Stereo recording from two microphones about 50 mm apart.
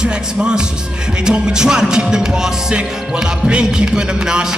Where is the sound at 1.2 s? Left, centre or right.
Centre.